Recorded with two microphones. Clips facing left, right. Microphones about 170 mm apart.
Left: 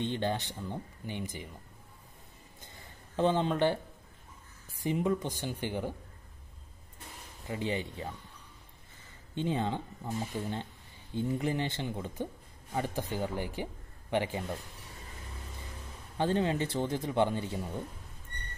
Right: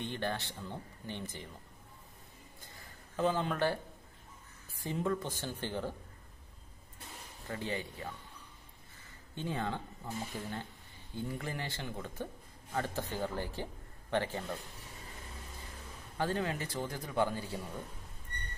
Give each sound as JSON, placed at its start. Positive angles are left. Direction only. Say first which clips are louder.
{"t": 0.0, "sound": "speech", "louder": "left 5 dB", "side_deg": 20}
{"t": 3.2, "sound": "speech", "louder": "left 4 dB", "side_deg": 25}
{"t": 7.4, "sound": "speech", "louder": "left 4 dB", "side_deg": 15}
{"t": 9.3, "sound": "speech", "louder": "left 5 dB", "side_deg": 20}
{"t": 16.2, "sound": "speech", "louder": "left 5 dB", "side_deg": 25}